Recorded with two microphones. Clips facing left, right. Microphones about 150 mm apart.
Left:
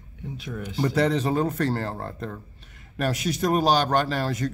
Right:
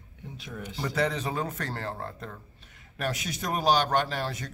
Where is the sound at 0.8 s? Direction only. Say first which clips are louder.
Left 6 dB; 35° left (ahead or behind).